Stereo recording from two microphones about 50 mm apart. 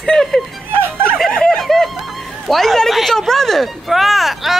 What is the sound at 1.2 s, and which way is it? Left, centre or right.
Snicker, centre.